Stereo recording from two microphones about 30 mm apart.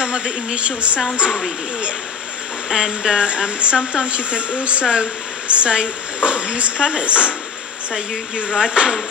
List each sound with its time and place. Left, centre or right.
0.0 s speech: right
0.6 s speech: right
2.7 s speech: right
7.9 s speech: right